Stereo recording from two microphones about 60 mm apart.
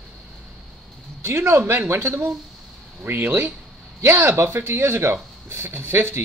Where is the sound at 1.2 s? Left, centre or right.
Right.